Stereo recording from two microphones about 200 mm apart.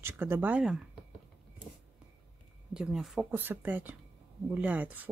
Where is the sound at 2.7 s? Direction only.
5° right (ahead or behind).